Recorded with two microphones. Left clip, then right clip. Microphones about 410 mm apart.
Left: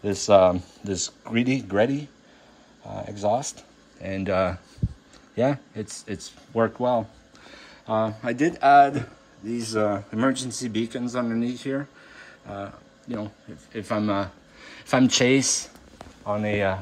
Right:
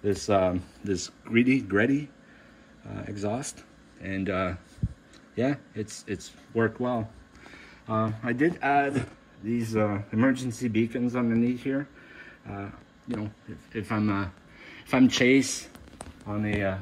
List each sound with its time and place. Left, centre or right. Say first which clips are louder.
0.0 s speech: left 7 dB; centre
3.2 s speech: left 9 dB; centre
13.2 s speech: left 3 dB; centre